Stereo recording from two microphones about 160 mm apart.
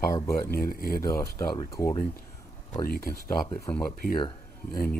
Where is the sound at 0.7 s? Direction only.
70° left (ahead or behind).